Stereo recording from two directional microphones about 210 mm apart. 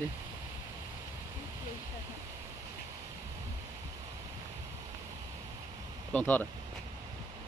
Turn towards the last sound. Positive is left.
turn(degrees=10)  # may be behind; listen again after turning